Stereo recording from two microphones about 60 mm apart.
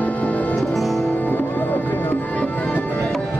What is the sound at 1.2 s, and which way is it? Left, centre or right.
Music, left.